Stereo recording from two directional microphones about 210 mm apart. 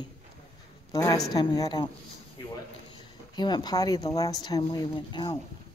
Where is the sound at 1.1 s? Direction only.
20° left (ahead or behind).